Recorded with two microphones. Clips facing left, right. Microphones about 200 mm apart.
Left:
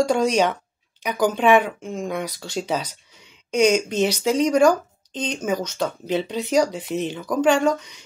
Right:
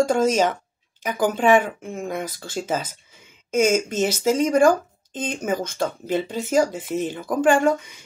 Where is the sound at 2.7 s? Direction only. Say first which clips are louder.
Even; 50° right (ahead or behind).